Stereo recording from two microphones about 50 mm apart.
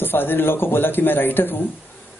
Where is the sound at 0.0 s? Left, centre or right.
Left.